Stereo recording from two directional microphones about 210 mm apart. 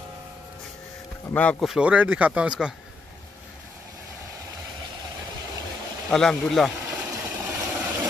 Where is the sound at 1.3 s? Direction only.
5° left (ahead or behind).